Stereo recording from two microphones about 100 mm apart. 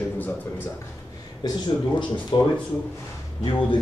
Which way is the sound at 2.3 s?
60° left (ahead or behind).